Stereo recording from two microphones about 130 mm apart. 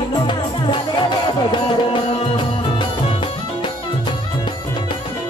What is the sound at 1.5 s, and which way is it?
Music, 35° left (ahead or behind).